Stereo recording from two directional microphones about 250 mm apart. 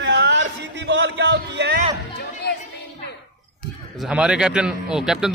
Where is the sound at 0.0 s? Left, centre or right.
Right.